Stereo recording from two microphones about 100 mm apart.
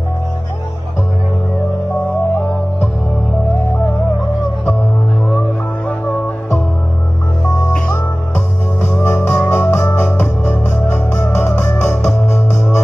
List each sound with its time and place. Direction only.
7.5 s music: 25° left (ahead or behind)
8.8 s organ: 20° left (ahead or behind)